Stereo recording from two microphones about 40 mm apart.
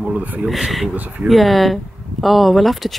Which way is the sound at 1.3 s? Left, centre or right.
Centre.